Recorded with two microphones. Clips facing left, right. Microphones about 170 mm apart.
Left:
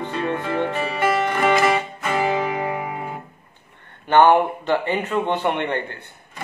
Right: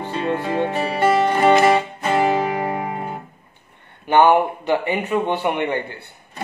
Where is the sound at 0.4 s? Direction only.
35° right (ahead or behind).